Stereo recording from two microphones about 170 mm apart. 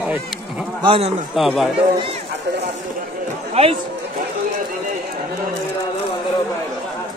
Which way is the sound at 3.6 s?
35° right (ahead or behind).